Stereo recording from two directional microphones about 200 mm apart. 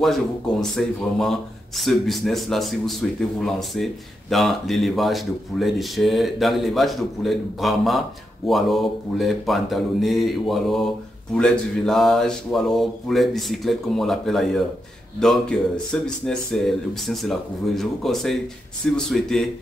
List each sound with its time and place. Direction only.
0.0 s speech: centre (ahead or behind)